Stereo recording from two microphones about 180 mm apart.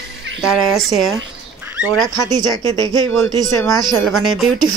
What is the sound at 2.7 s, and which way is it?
Speech, 20° left (ahead or behind).